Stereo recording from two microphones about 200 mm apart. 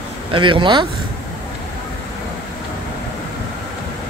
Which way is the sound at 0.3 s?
25° right (ahead or behind).